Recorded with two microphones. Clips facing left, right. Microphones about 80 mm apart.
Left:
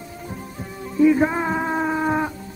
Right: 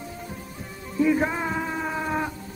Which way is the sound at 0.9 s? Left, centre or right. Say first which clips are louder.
Left 6 dB; centre.